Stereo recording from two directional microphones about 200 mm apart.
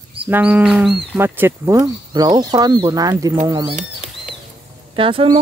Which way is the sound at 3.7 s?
35° right (ahead or behind).